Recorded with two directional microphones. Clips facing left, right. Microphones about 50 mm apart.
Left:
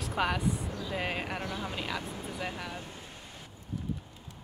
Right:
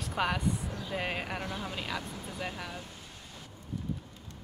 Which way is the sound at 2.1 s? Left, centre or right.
Centre.